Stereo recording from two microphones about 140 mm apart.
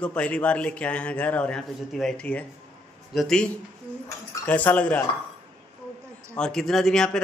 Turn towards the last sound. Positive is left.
turn(degrees=5)  # may be behind; listen again after turning